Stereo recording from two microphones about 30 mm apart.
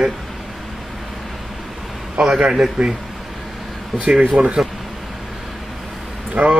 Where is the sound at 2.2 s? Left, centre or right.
Right.